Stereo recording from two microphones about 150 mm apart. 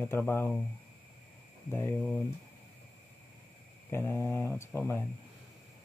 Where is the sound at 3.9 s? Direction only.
15° left (ahead or behind).